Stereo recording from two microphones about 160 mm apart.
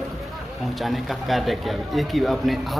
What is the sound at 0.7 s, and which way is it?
A man's voice, centre (ahead or behind).